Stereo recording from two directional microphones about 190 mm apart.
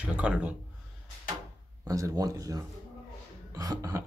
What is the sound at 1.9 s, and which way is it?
Speech, 15° right (ahead or behind).